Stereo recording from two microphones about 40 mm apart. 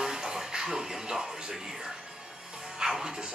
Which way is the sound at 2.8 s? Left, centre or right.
Centre.